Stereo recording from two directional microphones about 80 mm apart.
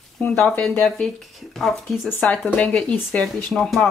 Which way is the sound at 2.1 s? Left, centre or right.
Centre.